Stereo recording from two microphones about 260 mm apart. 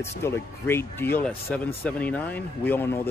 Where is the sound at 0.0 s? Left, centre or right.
Centre.